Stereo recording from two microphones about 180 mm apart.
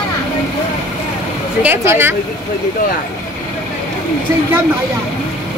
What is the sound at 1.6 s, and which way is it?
Speech, 15° right (ahead or behind).